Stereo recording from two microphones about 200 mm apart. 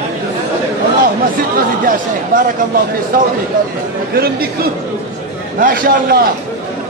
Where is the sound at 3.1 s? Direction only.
45° right (ahead or behind).